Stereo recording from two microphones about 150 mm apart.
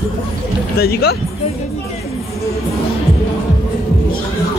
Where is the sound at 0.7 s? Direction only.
90° left.